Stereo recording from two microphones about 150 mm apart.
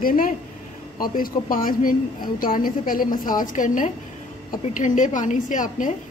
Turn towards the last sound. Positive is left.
turn(degrees=60)  # may be behind; listen again after turning